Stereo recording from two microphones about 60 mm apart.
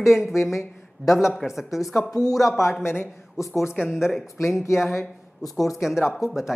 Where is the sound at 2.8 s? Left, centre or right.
Left.